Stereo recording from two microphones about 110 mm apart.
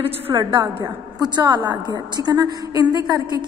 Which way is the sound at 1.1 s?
40° right (ahead or behind).